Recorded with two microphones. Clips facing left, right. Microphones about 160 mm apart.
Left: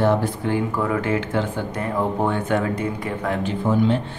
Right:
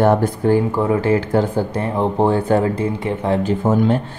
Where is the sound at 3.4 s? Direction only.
45° right (ahead or behind).